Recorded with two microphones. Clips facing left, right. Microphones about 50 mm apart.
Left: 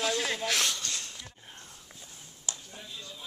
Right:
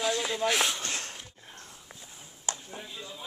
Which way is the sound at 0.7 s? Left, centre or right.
Right.